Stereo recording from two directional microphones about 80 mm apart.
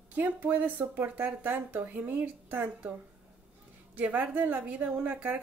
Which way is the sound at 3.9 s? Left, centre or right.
Right.